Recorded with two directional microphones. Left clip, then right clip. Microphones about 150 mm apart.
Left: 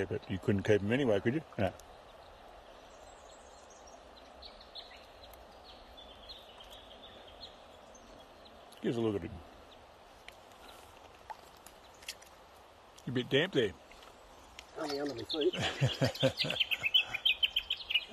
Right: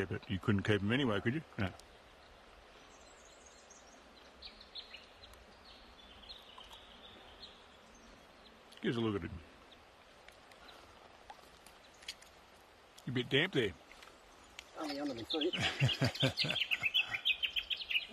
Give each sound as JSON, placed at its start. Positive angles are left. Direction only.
{"t": 0.0, "sound": "speech", "side_deg": -5}
{"t": 8.8, "sound": "speech", "side_deg": -5}
{"t": 13.1, "sound": "speech", "side_deg": 0}
{"t": 14.6, "sound": "a sound", "side_deg": 0}
{"t": 15.2, "sound": "speech", "side_deg": 25}
{"t": 15.5, "sound": "speech", "side_deg": 0}
{"t": 16.3, "sound": "bird vocalization", "side_deg": -20}